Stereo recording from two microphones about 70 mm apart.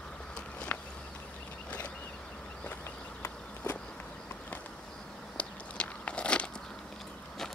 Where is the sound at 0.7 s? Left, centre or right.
Left.